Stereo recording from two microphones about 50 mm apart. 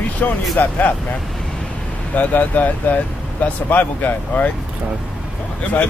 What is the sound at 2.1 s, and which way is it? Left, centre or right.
Speech, left.